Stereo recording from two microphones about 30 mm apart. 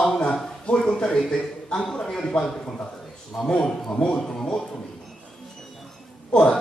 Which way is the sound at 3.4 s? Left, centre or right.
Centre.